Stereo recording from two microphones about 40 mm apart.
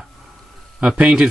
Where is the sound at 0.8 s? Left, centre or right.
Right.